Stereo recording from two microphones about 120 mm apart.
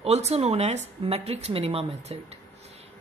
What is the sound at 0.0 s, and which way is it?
Speech, 60° right (ahead or behind).